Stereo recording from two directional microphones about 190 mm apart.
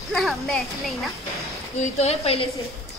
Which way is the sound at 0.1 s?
Centre (ahead or behind).